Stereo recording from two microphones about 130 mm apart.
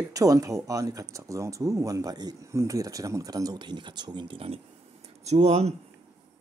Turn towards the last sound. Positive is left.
turn(degrees=-55)  # may be behind; listen again after turning